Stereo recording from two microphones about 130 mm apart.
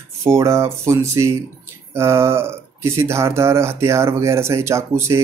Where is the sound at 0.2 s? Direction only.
25° right (ahead or behind).